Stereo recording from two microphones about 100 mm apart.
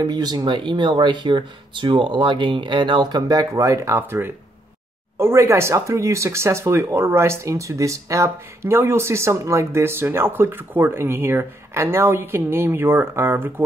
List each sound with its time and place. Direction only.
0.0 s speech: 40° right (ahead or behind); by 13.5 s 20° right (ahead or behind)